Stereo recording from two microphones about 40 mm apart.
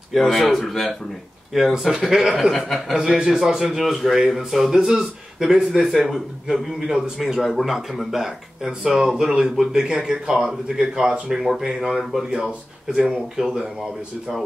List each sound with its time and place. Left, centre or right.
0.1 s speech: centre
1.5 s a man's voice: centre
11.7 s speech: right
12.0 s speech: centre
12.3 s speech: right
13.0 s a man's voice: centre